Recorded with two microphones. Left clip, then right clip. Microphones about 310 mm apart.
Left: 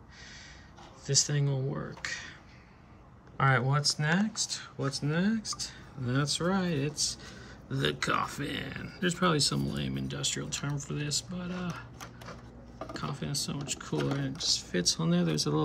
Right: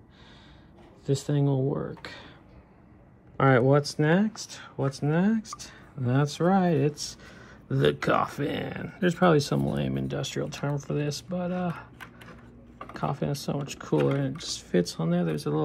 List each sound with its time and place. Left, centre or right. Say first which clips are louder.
1.5 s speech: right 8 dB; right
2.0 s speech: left 5 dB; centre
3.3 s speech: right 7 dB; centre
12.9 s speech: right 6 dB; centre